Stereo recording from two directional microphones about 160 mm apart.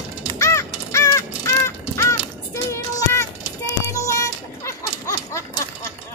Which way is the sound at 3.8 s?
20° left (ahead or behind).